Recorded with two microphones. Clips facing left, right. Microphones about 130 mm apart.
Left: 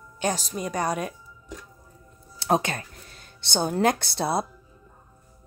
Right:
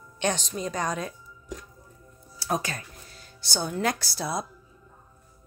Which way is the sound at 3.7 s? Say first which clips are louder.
Left 5 dB; 50° left (ahead or behind).